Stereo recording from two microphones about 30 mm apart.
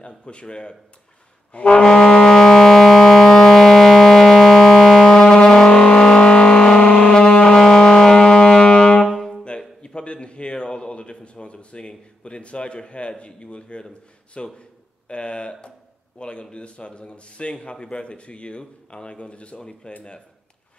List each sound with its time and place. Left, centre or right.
0.0 s a man's voice: left
1.5 s brass instrument: left
1.9 s music: left; by 5.2 s centre
5.2 s vehicle: left
6.8 s music: left
7.1 s music: left
9.8 s a sound: left
12.2 s a man's voice: left
13.2 s a sound: left
14.3 s a man's voice: left
15.0 s a sound: left
16.5 s a man's voice: left